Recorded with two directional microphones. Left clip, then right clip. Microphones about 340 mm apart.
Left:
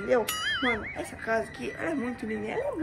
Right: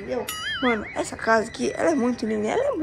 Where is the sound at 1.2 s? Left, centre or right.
Centre.